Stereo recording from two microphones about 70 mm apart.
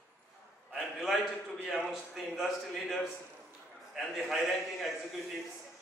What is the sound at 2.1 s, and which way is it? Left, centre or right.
Speech, centre.